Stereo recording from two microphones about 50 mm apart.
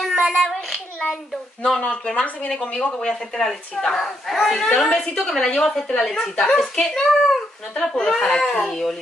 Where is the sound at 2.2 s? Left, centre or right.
Left.